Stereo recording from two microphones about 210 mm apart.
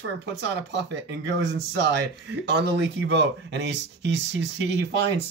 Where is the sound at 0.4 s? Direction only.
55° right (ahead or behind).